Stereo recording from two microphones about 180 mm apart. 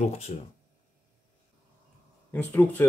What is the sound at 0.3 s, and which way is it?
Speech, 40° left (ahead or behind).